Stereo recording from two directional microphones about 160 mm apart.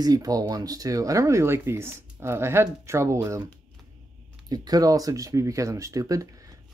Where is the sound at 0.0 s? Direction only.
25° right (ahead or behind).